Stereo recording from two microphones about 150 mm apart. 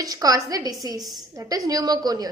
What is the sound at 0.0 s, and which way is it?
A woman's voice, 25° right (ahead or behind).